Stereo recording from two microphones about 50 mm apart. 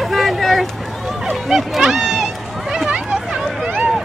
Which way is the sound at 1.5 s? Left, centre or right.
Centre.